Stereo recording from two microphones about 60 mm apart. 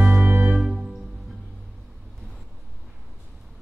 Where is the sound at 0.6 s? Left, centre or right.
Centre.